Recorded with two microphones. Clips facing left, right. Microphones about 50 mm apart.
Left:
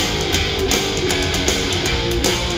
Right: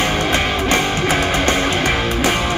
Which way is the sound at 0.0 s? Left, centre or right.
Right.